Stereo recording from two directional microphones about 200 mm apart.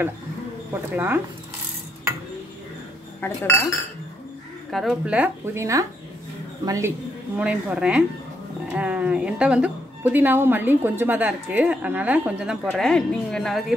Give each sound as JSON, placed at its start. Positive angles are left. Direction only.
{"t": 0.9, "sound": "a woman's voice", "side_deg": -10}
{"t": 3.2, "sound": "speech", "side_deg": 10}
{"t": 4.6, "sound": "a woman's voice", "side_deg": 0}
{"t": 7.3, "sound": "a woman's voice", "side_deg": -5}